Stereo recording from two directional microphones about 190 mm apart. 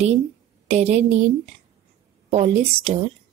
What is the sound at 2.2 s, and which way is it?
Speech, 35° right (ahead or behind).